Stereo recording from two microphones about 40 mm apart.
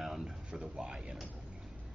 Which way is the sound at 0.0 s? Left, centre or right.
Centre.